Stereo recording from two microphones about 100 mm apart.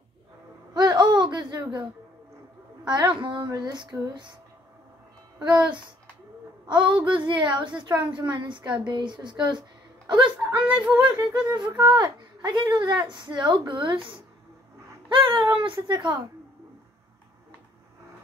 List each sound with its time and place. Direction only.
0.7 s a sound: 45° right (ahead or behind)
2.8 s a woman's voice: 45° right (ahead or behind)
3.4 s speech: 40° right (ahead or behind)
6.7 s speech: 55° right (ahead or behind)
10.5 s speech: 10° right (ahead or behind)
11.1 s speech: 45° right (ahead or behind)
15.0 s a sound: 60° right (ahead or behind)
15.6 s speech: 50° right (ahead or behind)